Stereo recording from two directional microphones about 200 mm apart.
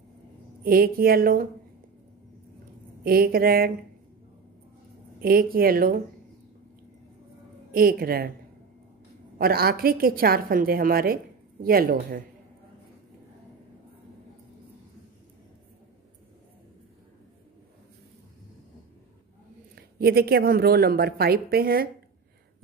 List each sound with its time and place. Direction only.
0.7 s speech: 45° right (ahead or behind)
3.0 s speech: 50° right (ahead or behind)
5.2 s speech: 45° right (ahead or behind)
7.7 s speech: 45° right (ahead or behind)
9.4 s speech: 50° right (ahead or behind)
19.7 s speech: 50° right (ahead or behind)